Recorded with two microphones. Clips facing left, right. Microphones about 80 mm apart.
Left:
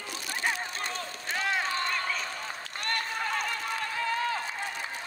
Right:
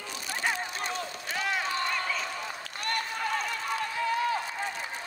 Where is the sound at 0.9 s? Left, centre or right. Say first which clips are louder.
Right 1 dB; left.